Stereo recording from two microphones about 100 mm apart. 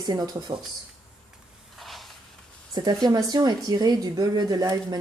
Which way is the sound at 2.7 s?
40° right (ahead or behind).